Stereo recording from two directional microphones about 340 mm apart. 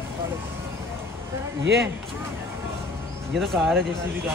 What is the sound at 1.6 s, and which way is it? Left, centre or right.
Speech, right.